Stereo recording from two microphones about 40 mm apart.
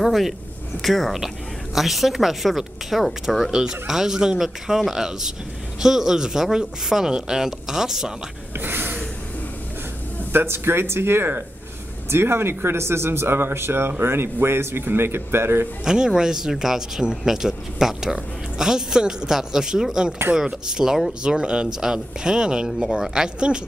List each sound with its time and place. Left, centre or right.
0.0 s a woman's voice: centre
3.5 s speech: centre
8.5 s a sound: right
10.3 s speech: right
12.1 s speech: right
15.8 s speech: centre